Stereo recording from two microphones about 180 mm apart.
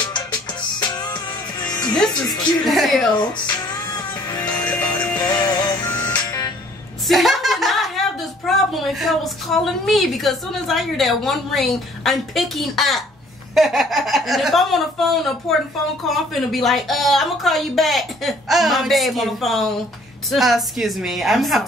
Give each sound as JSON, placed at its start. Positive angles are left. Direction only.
{"t": 0.0, "sound": "music", "side_deg": 25}
{"t": 2.6, "sound": "a woman's voice", "side_deg": 0}
{"t": 3.2, "sound": "music", "side_deg": 20}
{"t": 4.6, "sound": "music", "side_deg": 10}
{"t": 5.3, "sound": "music", "side_deg": 20}
{"t": 7.1, "sound": "a sound", "side_deg": 0}
{"t": 8.5, "sound": "a woman's voice", "side_deg": 0}